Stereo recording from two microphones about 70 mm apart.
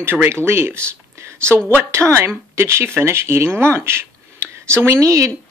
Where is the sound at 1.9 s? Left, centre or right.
Right.